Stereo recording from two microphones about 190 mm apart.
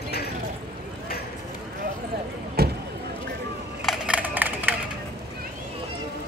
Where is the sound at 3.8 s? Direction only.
5° right (ahead or behind).